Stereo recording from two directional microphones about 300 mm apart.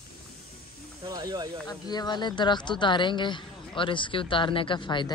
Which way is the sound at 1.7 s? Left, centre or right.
Centre.